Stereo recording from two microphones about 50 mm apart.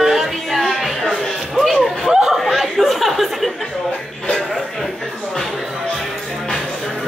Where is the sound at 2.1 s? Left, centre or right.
Centre.